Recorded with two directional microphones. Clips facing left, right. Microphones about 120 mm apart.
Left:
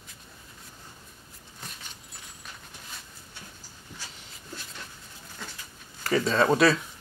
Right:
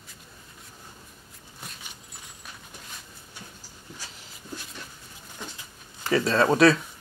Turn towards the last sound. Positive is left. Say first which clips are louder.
# right 2 dB
turn(degrees=0)  # may be behind; listen again after turning